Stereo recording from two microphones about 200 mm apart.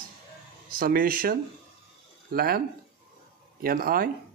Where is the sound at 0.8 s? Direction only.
45° right (ahead or behind).